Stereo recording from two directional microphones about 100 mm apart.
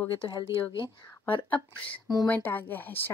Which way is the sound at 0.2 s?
60° left (ahead or behind).